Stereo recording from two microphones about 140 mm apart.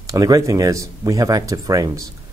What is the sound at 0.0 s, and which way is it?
Speech, 25° right (ahead or behind).